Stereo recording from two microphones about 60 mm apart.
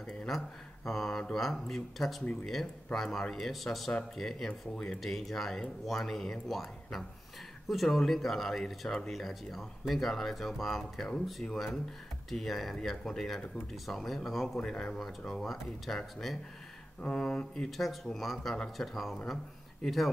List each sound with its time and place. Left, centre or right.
0.0 s a sound: centre
0.3 s speech: centre
4.5 s speech: centre
5.0 s speech: centre
14.6 s speech: centre
17.0 s speech: centre